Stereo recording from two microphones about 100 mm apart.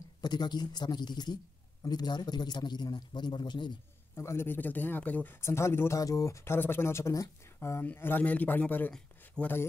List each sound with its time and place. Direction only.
0.2 s a man's voice: 45° left (ahead or behind)
4.1 s a man's voice: 25° left (ahead or behind); by 9.5 s 10° left (ahead or behind)